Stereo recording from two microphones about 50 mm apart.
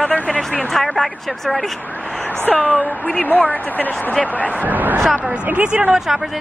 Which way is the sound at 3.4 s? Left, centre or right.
Left.